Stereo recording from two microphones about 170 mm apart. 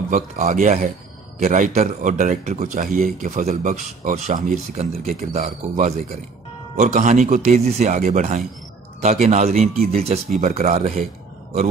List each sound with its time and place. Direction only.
0.1 s speech: 45° right (ahead or behind)
4.7 s speech: 40° right (ahead or behind)